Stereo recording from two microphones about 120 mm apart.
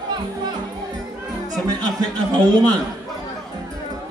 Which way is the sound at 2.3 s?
35° right (ahead or behind).